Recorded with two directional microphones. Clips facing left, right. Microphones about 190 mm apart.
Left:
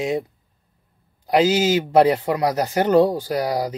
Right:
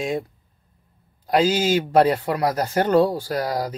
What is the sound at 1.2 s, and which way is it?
A man's voice, 20° left (ahead or behind).